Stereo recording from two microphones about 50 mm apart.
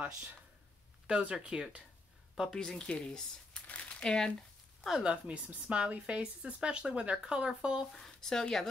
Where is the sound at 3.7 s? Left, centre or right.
Left.